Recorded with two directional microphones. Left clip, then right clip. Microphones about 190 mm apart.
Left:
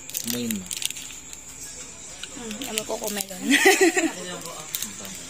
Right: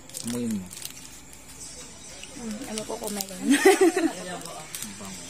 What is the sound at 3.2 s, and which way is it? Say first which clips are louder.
Speech: left 3 dB; 25° right (ahead or behind).